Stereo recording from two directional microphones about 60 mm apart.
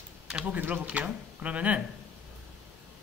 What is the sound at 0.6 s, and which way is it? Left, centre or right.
Speech, right.